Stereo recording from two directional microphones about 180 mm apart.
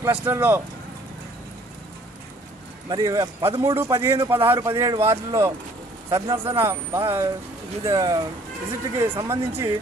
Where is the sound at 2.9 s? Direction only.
20° right (ahead or behind).